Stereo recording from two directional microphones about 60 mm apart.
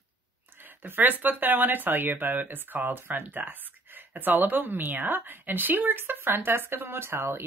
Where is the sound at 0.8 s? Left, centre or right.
Right.